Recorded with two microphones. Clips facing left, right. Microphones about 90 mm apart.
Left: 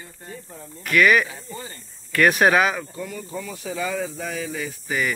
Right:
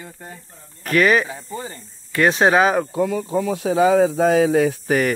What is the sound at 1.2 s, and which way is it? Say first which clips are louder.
Speech: right 5 dB; 45° right (ahead or behind).